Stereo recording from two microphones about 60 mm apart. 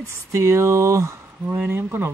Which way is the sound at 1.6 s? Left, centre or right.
Right.